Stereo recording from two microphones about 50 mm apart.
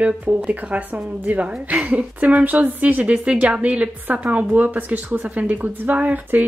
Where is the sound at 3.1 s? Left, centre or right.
Right.